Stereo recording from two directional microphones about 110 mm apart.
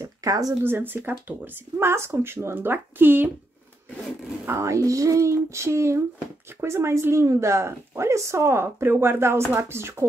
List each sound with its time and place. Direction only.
0.0 s a sound: 35° right (ahead or behind)
0.7 s speech: 20° right (ahead or behind)
4.5 s speech: 25° right (ahead or behind)